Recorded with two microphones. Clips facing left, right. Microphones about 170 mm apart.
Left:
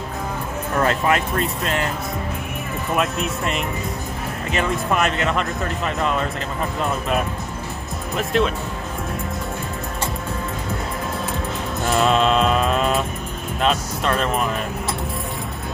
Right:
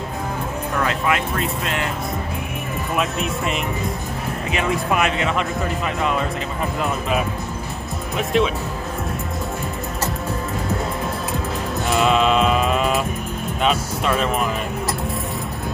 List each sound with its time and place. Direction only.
0.8 s speech: 40° left (ahead or behind)
3.0 s speech: centre (ahead or behind)
6.8 s speech: centre (ahead or behind)
11.8 s music: centre (ahead or behind)
13.6 s speech: 5° right (ahead or behind)